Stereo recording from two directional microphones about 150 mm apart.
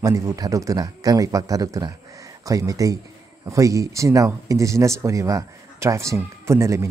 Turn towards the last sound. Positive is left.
turn(degrees=-20)  # may be behind; listen again after turning